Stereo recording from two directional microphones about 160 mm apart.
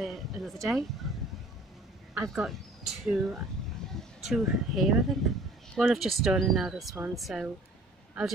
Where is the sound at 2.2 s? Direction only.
Centre (ahead or behind).